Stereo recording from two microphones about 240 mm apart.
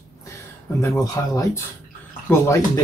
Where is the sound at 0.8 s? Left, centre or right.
Centre.